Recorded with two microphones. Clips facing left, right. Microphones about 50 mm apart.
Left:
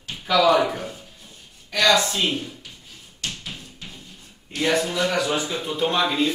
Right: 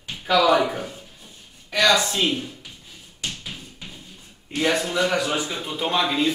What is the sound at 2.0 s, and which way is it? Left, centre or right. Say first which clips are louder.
Speech: right 1 dB; centre.